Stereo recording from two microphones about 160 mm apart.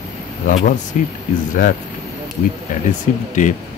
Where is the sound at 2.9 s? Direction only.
50° left (ahead or behind).